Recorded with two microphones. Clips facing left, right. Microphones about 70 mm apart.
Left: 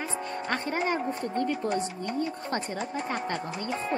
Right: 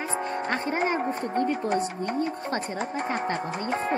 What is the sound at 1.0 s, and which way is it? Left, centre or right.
Speech, right.